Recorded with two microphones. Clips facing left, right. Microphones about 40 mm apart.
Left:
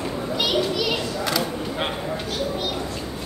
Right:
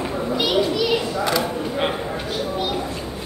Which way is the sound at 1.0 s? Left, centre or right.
Centre.